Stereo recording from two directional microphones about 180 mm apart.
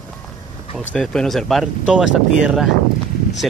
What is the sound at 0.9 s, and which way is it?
Speech, 5° left (ahead or behind).